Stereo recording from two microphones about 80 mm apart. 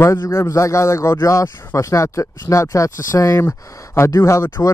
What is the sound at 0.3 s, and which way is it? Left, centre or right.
Speech, left.